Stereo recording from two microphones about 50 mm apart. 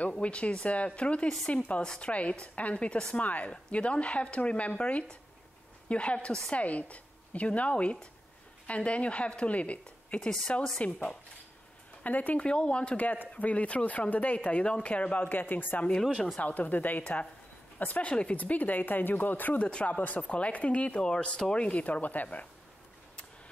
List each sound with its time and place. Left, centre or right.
0.2 s speech: left
6.5 s speech: left
12.4 s speech: left
12.9 s speech: left
18.0 s speech: left
19.6 s speech: left